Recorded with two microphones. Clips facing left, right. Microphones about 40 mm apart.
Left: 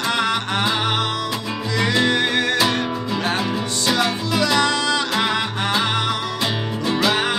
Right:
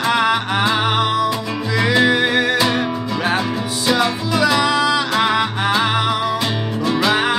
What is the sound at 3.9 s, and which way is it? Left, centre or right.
Music, centre.